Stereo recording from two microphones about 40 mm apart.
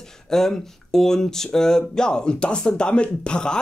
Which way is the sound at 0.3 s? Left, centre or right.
Centre.